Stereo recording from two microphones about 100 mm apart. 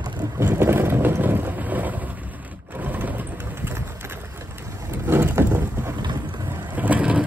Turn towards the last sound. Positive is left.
turn(degrees=-15)  # may be behind; listen again after turning